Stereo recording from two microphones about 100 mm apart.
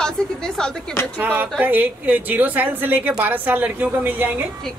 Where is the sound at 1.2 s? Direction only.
20° right (ahead or behind).